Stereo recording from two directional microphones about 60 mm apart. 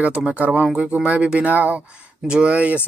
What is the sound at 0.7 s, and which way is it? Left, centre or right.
Speech, centre.